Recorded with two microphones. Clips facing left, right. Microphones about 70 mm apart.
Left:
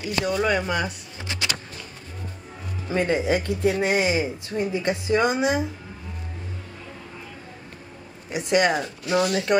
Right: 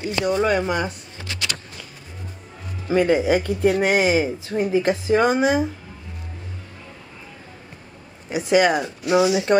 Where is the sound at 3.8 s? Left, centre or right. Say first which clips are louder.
Right 4 dB; right.